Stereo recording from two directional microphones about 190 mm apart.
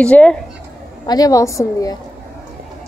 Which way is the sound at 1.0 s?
20° left (ahead or behind).